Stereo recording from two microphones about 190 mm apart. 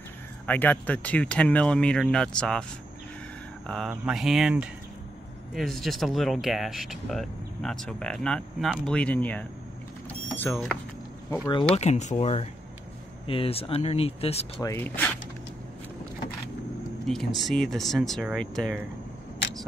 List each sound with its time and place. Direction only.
0.5 s speech: 10° left (ahead or behind)
3.6 s speech: centre (ahead or behind)
10.0 s vehicle: 10° left (ahead or behind)
11.7 s speech: 35° left (ahead or behind)
14.6 s speech: 15° left (ahead or behind)
17.1 s speech: centre (ahead or behind)